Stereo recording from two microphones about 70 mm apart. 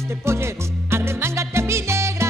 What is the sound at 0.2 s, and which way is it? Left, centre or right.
Music, right.